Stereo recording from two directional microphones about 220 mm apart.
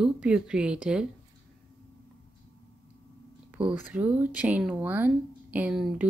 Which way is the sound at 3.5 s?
5° right (ahead or behind).